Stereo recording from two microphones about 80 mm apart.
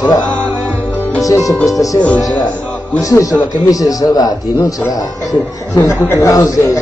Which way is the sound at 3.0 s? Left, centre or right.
Left.